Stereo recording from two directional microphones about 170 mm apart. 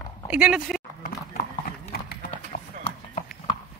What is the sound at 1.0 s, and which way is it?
Clip-clop, 55° left (ahead or behind).